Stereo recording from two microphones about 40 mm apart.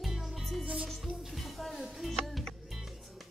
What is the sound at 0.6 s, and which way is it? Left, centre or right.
Music, right.